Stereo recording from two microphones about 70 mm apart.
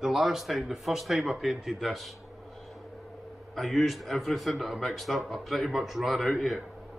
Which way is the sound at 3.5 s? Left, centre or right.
Centre.